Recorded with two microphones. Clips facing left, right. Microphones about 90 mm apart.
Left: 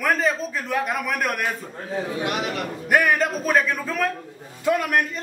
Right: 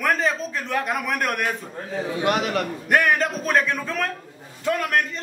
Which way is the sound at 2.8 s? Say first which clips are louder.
Left 1 dB; 5° left (ahead or behind).